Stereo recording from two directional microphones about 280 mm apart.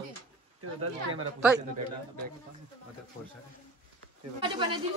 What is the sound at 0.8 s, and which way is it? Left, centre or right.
Speech, right.